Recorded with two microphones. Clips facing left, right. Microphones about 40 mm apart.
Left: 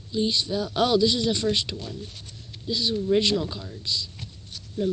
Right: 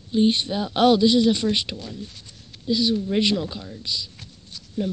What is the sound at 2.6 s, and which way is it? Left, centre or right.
Speech, centre.